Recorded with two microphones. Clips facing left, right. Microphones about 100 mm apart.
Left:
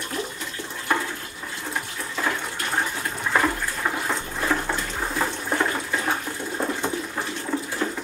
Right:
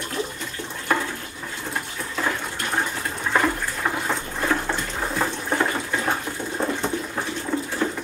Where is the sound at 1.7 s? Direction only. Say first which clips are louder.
Even; centre (ahead or behind).